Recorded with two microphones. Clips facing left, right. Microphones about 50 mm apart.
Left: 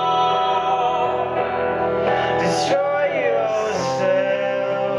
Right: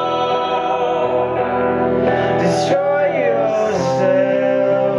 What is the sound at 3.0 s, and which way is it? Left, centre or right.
Music, left.